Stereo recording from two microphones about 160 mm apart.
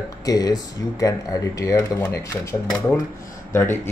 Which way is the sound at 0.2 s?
25° left (ahead or behind).